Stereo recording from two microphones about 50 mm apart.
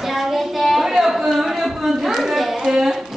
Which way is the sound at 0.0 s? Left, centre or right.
Centre.